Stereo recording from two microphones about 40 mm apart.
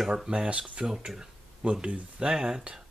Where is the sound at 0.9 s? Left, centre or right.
Centre.